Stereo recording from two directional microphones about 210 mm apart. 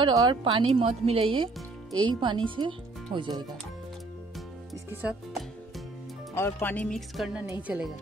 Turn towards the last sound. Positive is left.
turn(degrees=-5)  # may be behind; listen again after turning